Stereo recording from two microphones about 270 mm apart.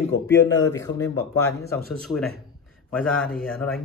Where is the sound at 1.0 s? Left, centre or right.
Centre.